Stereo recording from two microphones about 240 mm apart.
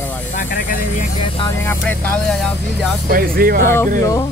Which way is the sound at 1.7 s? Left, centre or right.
Centre.